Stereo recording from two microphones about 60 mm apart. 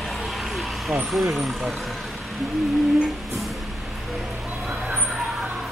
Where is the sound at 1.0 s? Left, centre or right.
Centre.